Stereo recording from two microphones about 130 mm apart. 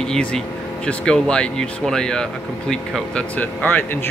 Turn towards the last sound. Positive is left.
turn(degrees=15)  # may be behind; listen again after turning